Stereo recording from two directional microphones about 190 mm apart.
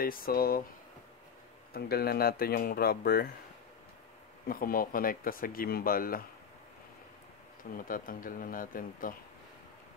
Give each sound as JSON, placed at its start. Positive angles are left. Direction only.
{"t": 0.0, "sound": "speech", "side_deg": 50}
{"t": 1.7, "sound": "speech", "side_deg": 55}
{"t": 4.5, "sound": "speech", "side_deg": 50}
{"t": 7.7, "sound": "speech", "side_deg": 45}